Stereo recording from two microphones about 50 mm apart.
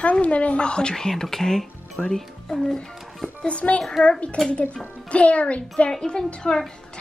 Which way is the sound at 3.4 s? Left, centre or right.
Left.